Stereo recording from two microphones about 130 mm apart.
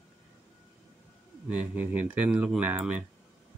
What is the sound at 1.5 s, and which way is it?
Speech, 10° right (ahead or behind).